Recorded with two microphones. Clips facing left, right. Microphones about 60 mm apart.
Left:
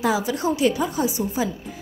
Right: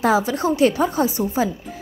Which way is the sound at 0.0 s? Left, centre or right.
Right.